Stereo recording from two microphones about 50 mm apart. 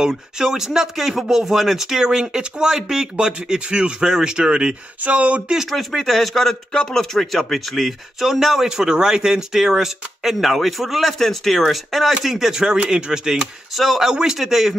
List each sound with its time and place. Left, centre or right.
0.0 s speech: centre
5.0 s speech: right
5.7 s speech: centre